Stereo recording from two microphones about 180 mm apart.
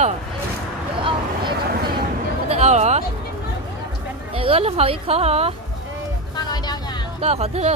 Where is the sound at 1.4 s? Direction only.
55° right (ahead or behind).